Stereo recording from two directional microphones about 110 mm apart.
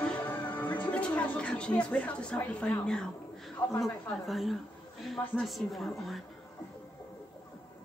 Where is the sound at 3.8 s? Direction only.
Centre (ahead or behind).